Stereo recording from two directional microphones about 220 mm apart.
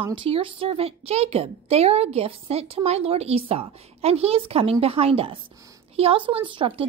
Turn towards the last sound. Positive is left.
turn(degrees=-25)  # may be behind; listen again after turning